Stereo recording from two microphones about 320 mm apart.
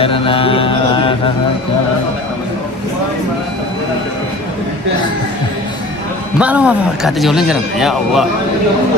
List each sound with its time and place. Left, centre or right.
0.0 s mantra: centre
6.3 s speech: centre